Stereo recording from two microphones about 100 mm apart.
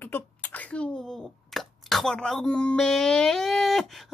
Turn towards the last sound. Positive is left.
turn(degrees=0)  # may be behind; listen again after turning